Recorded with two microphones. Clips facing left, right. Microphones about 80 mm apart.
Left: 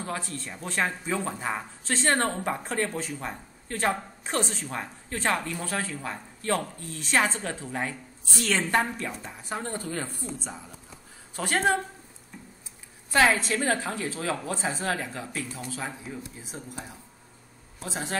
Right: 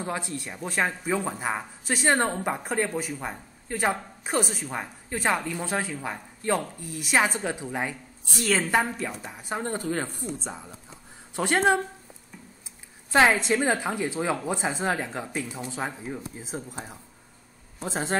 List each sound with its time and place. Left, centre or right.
0.0 s a woman's voice: centre
13.1 s a woman's voice: right
15.7 s a woman's voice: right